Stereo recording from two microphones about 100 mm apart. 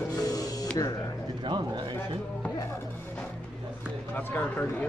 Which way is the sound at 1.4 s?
50° right (ahead or behind).